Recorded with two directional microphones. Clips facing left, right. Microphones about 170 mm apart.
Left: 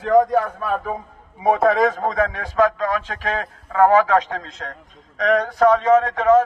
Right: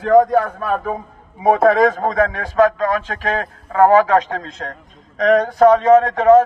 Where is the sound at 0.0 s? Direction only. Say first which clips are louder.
Right 3 dB; 55° right (ahead or behind).